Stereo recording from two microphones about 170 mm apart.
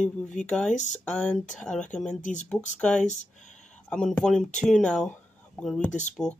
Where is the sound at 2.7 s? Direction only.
5° left (ahead or behind).